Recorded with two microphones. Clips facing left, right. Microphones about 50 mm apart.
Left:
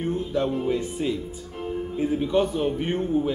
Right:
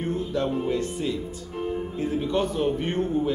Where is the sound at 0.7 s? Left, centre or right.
Centre.